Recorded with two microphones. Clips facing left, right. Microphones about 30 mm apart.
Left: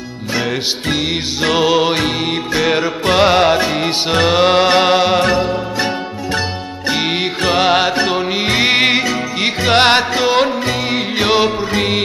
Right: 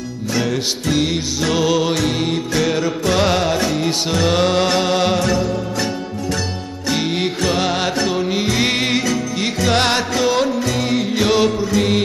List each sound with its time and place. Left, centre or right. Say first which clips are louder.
0.4 s music: left 2 dB; left
6.9 s music: left 2 dB; left